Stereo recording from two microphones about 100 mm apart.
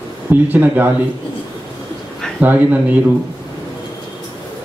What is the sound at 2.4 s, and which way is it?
Speech, 15° right (ahead or behind).